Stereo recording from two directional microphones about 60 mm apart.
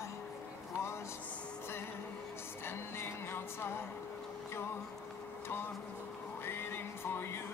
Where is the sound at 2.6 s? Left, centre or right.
Left.